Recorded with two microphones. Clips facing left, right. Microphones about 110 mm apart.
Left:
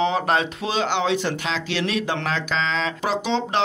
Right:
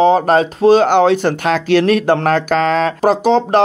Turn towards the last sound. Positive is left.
turn(degrees=-45)  # may be behind; listen again after turning